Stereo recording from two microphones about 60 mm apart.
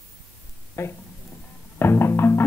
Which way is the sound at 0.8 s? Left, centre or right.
Left.